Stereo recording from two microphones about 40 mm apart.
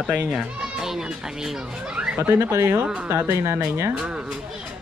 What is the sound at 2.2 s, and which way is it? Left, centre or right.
Speech, right.